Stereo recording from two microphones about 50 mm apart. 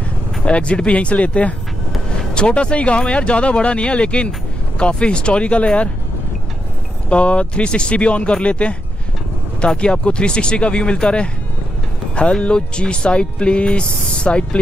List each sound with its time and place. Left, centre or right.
0.5 s speech: left
7.1 s speech: left
9.8 s speech: left